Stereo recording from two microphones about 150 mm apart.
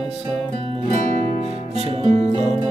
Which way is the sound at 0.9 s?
50° right (ahead or behind).